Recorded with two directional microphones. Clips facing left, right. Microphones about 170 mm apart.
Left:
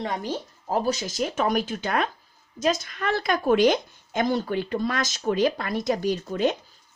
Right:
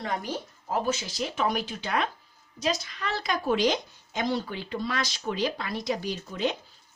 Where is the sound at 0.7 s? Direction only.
40° left (ahead or behind).